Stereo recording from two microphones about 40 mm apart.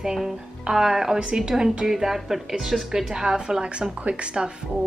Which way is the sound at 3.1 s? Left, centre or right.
Centre.